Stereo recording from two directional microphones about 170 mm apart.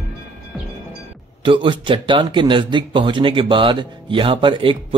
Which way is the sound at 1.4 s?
30° right (ahead or behind).